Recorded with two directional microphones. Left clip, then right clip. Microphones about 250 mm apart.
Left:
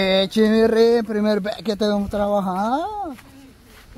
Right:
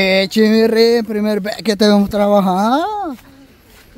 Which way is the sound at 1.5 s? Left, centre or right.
Right.